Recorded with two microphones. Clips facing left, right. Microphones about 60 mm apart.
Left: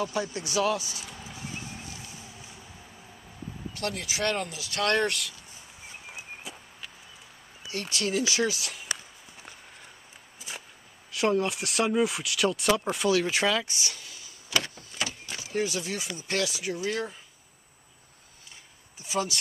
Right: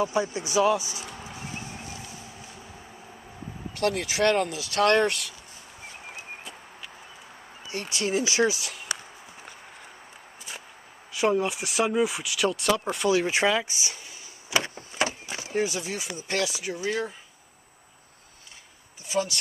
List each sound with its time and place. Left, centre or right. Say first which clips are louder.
0.0 s speech: right 4 dB; centre
1.3 s a sound: left 1 dB; centre
3.8 s speech: right 7 dB; right
5.0 s speech: right 3 dB; centre
7.7 s speech: right 1 dB; centre
8.3 s walk: right 4 dB; centre
10.5 s whip: even; centre
11.1 s speech: right 1 dB; centre
13.4 s a sound: right 3 dB; centre
14.8 s a sound: right 6 dB; right
15.5 s speech: right 2 dB; centre
19.0 s speech: right 2 dB; centre